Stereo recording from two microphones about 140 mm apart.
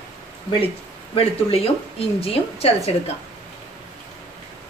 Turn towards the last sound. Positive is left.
turn(degrees=45)  # may be behind; listen again after turning